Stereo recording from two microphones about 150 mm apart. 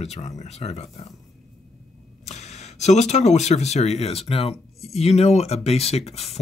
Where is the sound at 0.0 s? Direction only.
45° left (ahead or behind).